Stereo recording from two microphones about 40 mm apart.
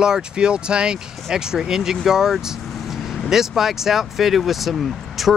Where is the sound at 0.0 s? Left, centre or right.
Right.